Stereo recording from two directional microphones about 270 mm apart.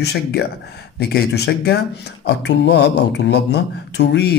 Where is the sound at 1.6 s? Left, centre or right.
Left.